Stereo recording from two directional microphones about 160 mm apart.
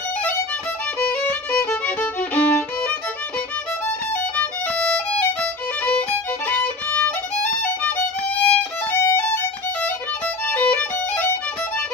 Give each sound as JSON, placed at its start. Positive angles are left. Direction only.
{"t": 1.7, "sound": "music", "side_deg": 10}
{"t": 4.6, "sound": "violin", "side_deg": 5}
{"t": 8.5, "sound": "violin", "side_deg": 15}